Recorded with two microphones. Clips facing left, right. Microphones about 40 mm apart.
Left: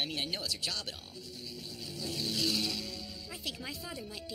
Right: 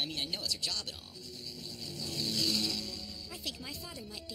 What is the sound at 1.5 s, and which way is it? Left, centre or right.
Vehicle, centre.